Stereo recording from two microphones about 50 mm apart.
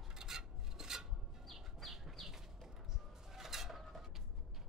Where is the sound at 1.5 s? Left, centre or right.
Centre.